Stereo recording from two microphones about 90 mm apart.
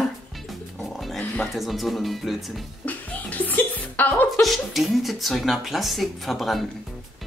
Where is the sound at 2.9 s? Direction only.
20° left (ahead or behind).